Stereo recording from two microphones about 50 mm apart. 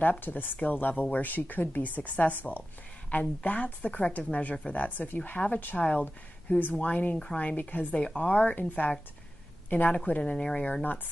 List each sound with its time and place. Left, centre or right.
0.0 s a woman's voice: left
6.6 s a woman's voice: left